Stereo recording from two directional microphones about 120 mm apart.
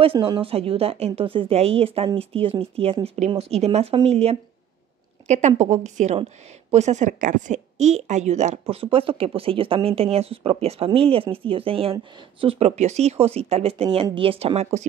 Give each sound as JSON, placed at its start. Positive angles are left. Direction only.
{"t": 0.0, "sound": "speech", "side_deg": -50}
{"t": 5.6, "sound": "a woman's voice", "side_deg": -85}
{"t": 6.1, "sound": "a woman's voice", "side_deg": -65}
{"t": 12.5, "sound": "speech", "side_deg": -65}